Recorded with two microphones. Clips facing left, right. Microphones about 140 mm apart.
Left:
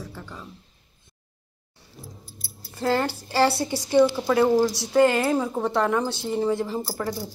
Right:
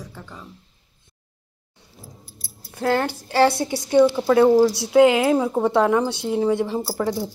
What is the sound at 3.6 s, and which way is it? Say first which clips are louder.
A woman's voice: right 3 dB; 10° right (ahead or behind).